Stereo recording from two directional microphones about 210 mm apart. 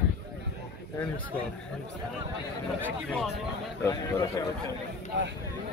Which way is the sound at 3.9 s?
15° left (ahead or behind).